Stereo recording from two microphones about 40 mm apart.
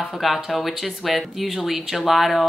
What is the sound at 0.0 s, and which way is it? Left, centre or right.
Speech, centre.